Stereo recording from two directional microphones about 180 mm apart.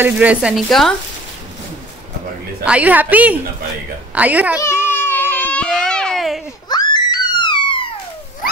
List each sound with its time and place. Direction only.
0.0 s speech: 10° right (ahead or behind)
2.6 s a woman's voice: 5° right (ahead or behind)
4.6 s baby cry: 15° left (ahead or behind)
6.7 s screaming: 25° left (ahead or behind)